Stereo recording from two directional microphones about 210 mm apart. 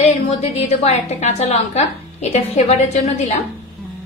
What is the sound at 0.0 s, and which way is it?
A woman's voice, 30° left (ahead or behind).